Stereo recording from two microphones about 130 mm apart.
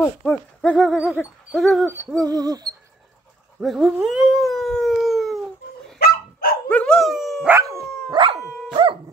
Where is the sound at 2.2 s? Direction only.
30° right (ahead or behind).